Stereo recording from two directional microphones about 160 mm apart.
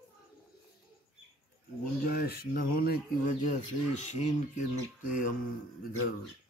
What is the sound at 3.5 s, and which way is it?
Speech, 45° left (ahead or behind).